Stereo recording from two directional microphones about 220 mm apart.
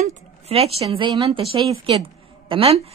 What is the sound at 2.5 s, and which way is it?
Speech, 25° right (ahead or behind).